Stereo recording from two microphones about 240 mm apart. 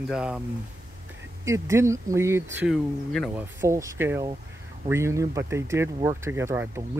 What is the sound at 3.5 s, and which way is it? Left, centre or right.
Speech, centre.